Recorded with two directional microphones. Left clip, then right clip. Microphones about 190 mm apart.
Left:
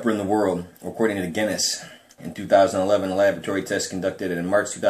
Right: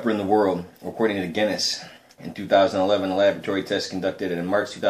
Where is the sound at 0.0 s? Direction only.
5° left (ahead or behind).